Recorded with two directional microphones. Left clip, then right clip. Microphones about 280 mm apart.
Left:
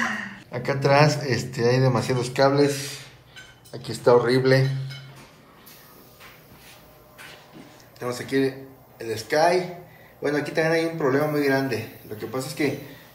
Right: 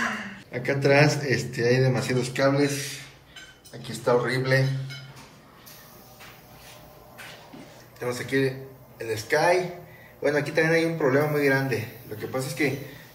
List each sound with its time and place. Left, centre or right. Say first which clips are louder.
0.5 s a man's voice: left 1 dB; centre
8.0 s a man's voice: left 1 dB; centre